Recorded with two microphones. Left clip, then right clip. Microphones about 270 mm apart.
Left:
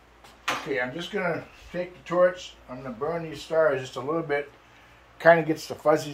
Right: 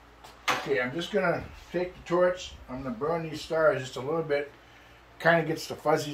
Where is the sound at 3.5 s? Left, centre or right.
Centre.